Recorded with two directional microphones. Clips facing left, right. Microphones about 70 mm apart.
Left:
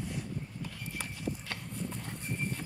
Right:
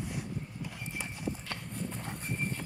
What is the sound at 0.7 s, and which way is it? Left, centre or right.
Clip-clop, right.